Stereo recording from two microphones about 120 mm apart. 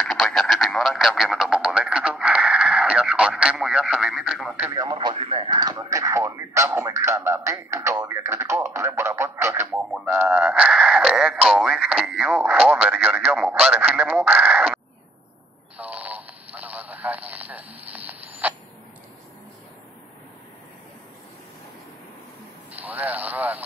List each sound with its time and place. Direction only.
0.0 s radio: centre (ahead or behind)
4.8 s radio: 40° right (ahead or behind)
5.1 s radio: 55° right (ahead or behind)
5.5 s radio: 35° right (ahead or behind)
9.7 s a sound: 15° right (ahead or behind)
13.3 s radio: 10° right (ahead or behind)
15.8 s radio: 15° right (ahead or behind)
22.7 s a sound: 15° right (ahead or behind)